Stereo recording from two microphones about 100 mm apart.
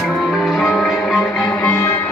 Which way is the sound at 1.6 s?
15° left (ahead or behind).